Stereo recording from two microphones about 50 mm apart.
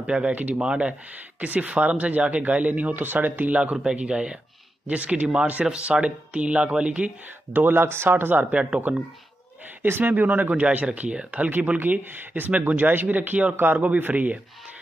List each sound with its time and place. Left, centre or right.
0.0 s speech: right
0.3 s speech: right
0.6 s speech: right
7.5 s speech: right
8.5 s speech: right
9.8 s speech: right
11.8 s speech: right